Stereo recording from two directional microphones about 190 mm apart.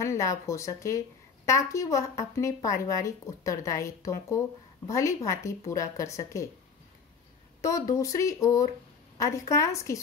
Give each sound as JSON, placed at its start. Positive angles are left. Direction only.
{"t": 0.0, "sound": "speech", "side_deg": 15}
{"t": 7.6, "sound": "speech", "side_deg": 15}